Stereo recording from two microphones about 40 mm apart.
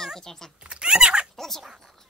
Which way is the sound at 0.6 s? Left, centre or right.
Right.